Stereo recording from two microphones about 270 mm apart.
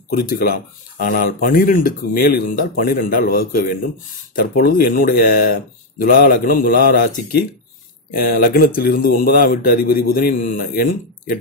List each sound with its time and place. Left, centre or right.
0.9 s speech: left